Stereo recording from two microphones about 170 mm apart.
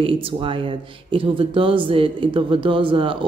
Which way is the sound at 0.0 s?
30° right (ahead or behind).